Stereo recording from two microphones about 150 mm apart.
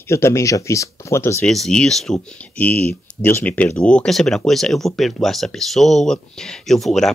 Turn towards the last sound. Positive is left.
turn(degrees=0)  # may be behind; listen again after turning